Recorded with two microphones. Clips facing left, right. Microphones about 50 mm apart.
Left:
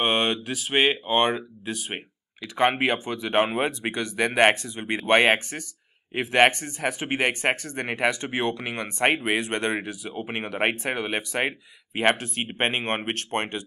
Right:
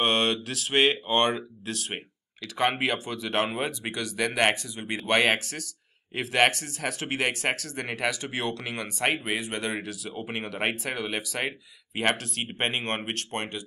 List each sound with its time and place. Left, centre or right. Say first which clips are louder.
0.0 s speech: left 1 dB; centre
9.3 s speech: left 5 dB; left
9.7 s speech: left 4 dB; centre
13.1 s speech: left 4 dB; left